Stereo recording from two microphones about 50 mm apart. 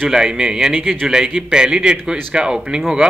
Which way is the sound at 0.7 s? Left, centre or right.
Right.